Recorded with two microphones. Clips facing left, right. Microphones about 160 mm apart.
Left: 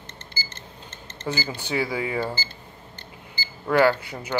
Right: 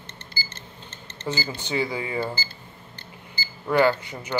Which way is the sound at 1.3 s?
5° left (ahead or behind).